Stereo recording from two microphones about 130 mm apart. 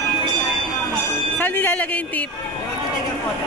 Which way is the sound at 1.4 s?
15° left (ahead or behind).